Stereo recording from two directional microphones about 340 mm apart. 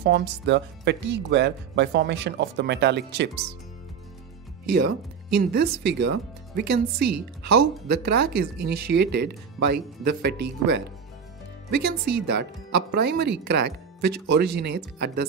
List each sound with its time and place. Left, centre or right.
0.0 s speech: right
4.6 s speech: right